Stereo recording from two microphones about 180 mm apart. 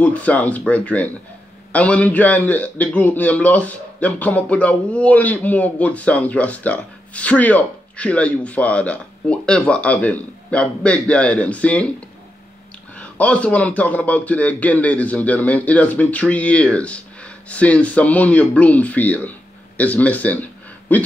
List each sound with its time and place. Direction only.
0.0 s a man's voice: 10° left (ahead or behind)
12.9 s a man's voice: 5° left (ahead or behind)